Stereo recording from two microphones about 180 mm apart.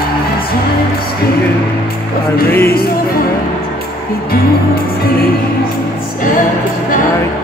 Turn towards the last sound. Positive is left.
turn(degrees=50)  # may be behind; listen again after turning